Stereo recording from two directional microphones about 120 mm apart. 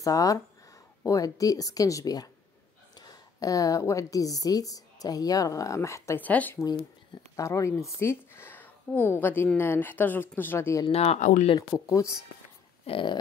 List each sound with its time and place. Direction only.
0.0 s a woman's voice: 30° left (ahead or behind); by 6.6 s 15° left (ahead or behind)
6.6 s a woman's voice: 35° left (ahead or behind); by 10.8 s 20° left (ahead or behind)
10.9 s speech: 65° left (ahead or behind); by 11.4 s 90° left
11.8 s speech: 25° left (ahead or behind)
12.8 s speech: 45° left (ahead or behind)